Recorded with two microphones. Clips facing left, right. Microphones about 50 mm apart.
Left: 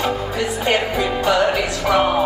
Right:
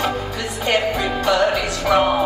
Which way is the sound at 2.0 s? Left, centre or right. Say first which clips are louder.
Left 1 dB; centre.